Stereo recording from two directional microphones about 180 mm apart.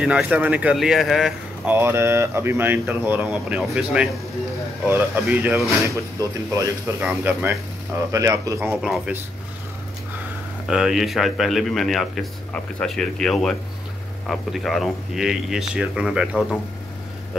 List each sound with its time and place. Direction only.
0.0 s speech: 5° right (ahead or behind)
8.8 s speech: 5° right (ahead or behind)
10.7 s speech: centre (ahead or behind)